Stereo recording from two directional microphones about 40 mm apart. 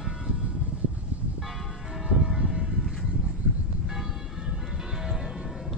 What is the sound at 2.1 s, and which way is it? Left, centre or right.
Church bell, centre.